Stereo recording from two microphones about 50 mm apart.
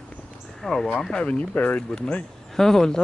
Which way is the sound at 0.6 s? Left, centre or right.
Centre.